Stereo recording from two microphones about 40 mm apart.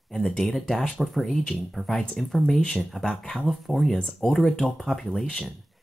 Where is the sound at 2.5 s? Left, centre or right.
Left; by 5.1 s centre.